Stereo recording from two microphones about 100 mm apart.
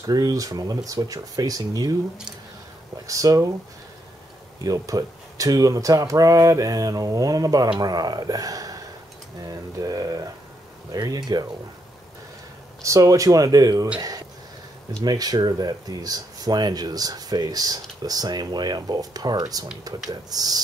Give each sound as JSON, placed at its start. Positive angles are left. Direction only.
{"t": 0.0, "sound": "speech", "side_deg": -40}
{"t": 3.1, "sound": "speech", "side_deg": -35}
{"t": 4.6, "sound": "speech", "side_deg": -35}
{"t": 12.8, "sound": "speech", "side_deg": -35}
{"t": 15.0, "sound": "speech", "side_deg": -40}